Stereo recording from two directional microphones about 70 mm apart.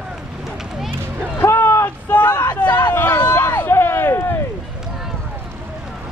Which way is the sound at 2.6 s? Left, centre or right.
Left.